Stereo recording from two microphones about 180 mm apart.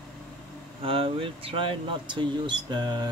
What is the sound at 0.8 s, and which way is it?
Speech, 30° right (ahead or behind).